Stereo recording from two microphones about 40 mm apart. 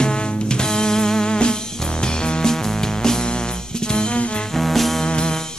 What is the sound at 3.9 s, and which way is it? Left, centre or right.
Music, left.